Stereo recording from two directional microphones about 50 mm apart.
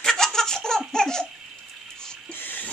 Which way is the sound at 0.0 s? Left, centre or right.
Centre.